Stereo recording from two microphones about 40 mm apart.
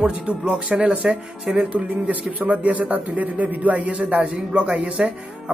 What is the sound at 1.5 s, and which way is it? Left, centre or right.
A man's voice, right.